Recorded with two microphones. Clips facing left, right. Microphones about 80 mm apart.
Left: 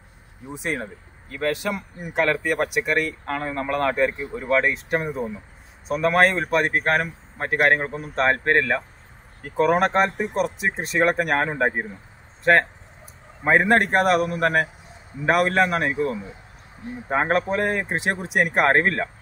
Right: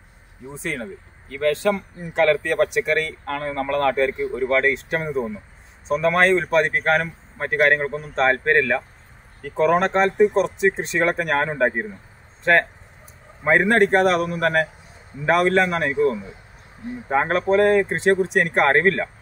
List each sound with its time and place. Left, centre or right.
0.5 s speech: centre
13.4 s speech: centre